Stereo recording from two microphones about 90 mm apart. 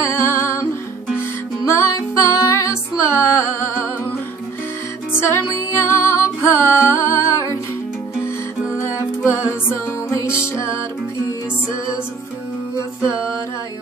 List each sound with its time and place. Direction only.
0.0 s music: 30° left (ahead or behind)
1.7 s music: 30° left (ahead or behind)
5.2 s music: 30° left (ahead or behind)